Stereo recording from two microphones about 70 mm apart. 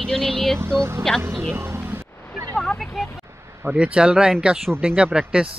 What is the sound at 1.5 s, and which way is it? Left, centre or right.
Music, right.